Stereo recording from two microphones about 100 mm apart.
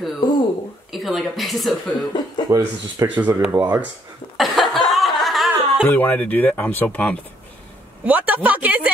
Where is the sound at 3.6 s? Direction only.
65° right (ahead or behind).